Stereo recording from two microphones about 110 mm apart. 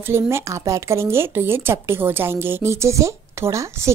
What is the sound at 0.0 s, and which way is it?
Speech, 25° right (ahead or behind).